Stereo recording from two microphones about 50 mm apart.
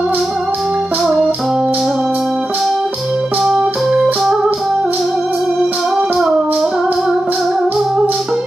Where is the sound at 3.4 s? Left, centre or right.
Centre.